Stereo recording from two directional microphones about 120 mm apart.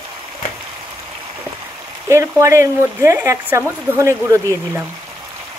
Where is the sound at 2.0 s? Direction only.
25° right (ahead or behind).